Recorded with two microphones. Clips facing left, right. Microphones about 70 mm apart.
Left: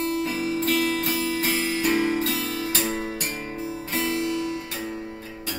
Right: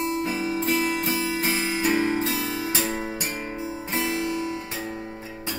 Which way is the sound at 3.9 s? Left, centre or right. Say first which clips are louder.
Left 1 dB; right.